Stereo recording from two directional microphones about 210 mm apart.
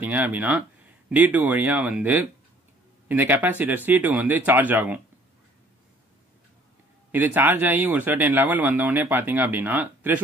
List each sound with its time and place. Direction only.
0.0 s speech: 10° right (ahead or behind)
7.1 s speech: 10° right (ahead or behind)